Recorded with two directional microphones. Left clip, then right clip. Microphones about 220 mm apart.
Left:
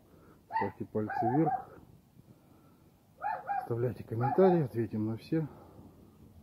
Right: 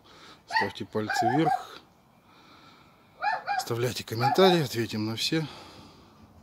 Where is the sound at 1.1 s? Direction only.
70° right (ahead or behind).